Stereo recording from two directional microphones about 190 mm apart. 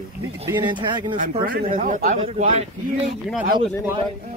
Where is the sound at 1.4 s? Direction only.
45° right (ahead or behind).